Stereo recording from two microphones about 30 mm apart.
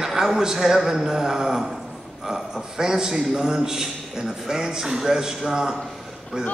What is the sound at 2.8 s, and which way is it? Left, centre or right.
A man's voice, right.